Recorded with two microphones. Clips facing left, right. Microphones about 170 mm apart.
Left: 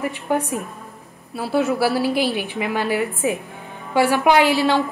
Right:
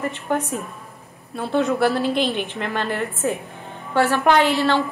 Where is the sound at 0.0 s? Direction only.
10° left (ahead or behind).